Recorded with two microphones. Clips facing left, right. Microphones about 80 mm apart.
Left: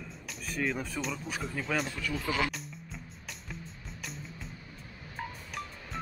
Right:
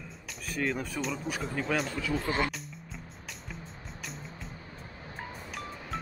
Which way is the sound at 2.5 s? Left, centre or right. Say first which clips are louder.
Right 1 dB; centre.